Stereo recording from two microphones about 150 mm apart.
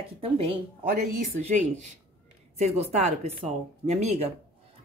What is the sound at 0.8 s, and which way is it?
Speech, 65° right (ahead or behind).